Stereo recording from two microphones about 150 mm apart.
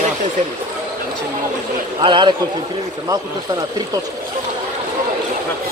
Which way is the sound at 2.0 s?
35° right (ahead or behind).